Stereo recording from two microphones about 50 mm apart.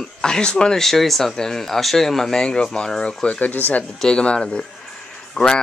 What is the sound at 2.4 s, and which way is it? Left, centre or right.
Speech, centre.